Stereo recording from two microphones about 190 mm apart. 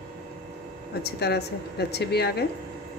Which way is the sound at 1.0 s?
60° left (ahead or behind).